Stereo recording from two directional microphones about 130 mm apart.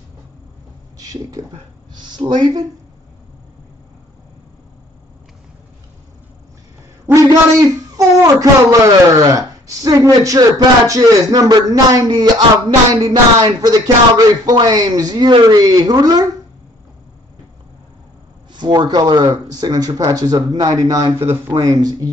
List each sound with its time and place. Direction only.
0.9 s a sound: 30° right (ahead or behind)
2.0 s speech: 35° right (ahead or behind)
7.2 s a man's voice: 30° right (ahead or behind)
18.5 s a woman's voice: 35° right (ahead or behind)